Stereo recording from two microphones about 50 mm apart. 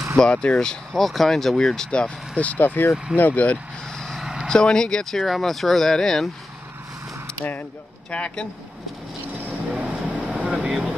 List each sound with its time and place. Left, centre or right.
0.2 s speech: left
1.9 s speech: left
3.8 s vehicle: centre
4.2 s vehicle: centre
4.5 s speech: centre
7.3 s speech: left
8.1 s speech: left
9.8 s vehicle: right
10.7 s speech: centre